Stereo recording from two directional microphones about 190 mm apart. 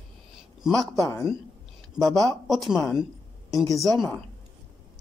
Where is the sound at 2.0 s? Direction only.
Centre (ahead or behind).